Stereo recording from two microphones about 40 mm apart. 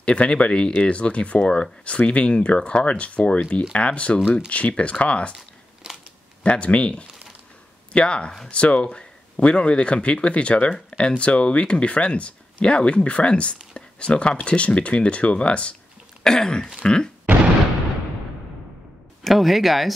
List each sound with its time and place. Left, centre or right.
0.0 s speech: left
6.4 s speech: left
16.3 s throat clearing: centre
16.8 s speech: centre
19.2 s speech: centre